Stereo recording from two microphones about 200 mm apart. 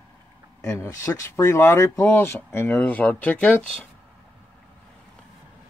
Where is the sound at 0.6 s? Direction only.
15° left (ahead or behind).